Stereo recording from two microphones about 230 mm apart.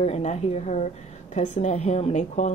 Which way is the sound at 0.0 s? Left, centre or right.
Left.